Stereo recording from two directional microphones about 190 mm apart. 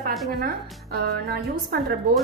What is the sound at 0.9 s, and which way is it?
Speech, 55° right (ahead or behind).